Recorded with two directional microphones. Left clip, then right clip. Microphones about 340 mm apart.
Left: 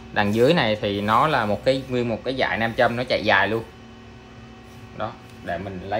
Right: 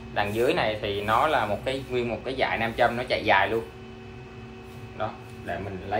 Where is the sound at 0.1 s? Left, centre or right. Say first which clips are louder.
Left 6 dB; left.